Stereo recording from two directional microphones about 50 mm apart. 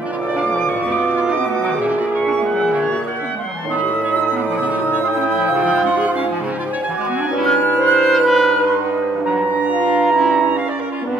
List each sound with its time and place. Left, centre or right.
0.9 s music: right
4.9 s music: centre
7.9 s music: centre
10.0 s music: centre